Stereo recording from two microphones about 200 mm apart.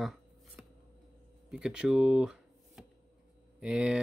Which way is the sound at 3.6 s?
5° right (ahead or behind).